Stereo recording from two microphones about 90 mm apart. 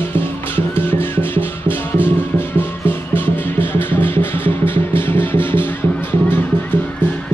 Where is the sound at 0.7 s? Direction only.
25° left (ahead or behind).